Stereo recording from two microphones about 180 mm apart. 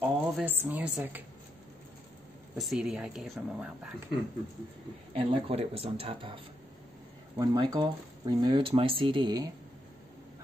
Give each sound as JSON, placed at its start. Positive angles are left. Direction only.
{"t": 0.0, "sound": "a woman's voice", "side_deg": -10}
{"t": 2.5, "sound": "speech", "side_deg": 0}
{"t": 5.1, "sound": "speech", "side_deg": -30}